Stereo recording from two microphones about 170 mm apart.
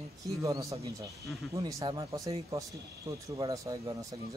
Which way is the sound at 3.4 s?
20° right (ahead or behind).